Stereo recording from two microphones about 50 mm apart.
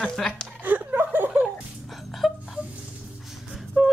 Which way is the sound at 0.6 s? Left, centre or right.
Right.